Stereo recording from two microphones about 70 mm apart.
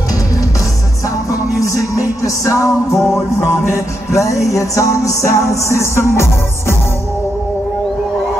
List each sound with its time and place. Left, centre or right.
1.3 s music: left